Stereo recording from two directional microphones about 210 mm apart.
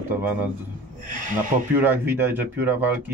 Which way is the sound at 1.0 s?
40° right (ahead or behind).